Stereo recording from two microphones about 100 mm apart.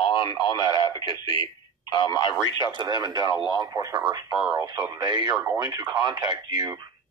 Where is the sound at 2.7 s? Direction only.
45° right (ahead or behind).